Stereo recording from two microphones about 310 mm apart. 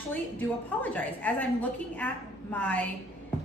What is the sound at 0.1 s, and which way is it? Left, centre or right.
A woman's voice, centre.